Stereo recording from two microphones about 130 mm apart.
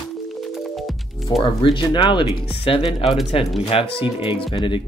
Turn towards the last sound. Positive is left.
turn(degrees=40)  # may be behind; listen again after turning